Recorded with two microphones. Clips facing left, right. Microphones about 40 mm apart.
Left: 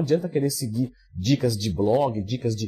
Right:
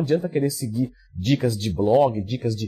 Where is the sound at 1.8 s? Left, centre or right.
Centre.